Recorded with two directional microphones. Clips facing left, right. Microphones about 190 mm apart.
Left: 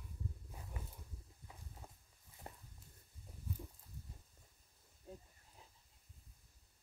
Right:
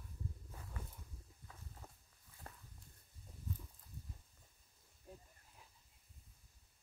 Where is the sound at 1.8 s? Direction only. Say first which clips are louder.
Even; 10° left (ahead or behind).